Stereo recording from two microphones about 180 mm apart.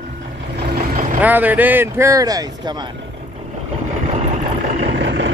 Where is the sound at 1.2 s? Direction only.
10° right (ahead or behind).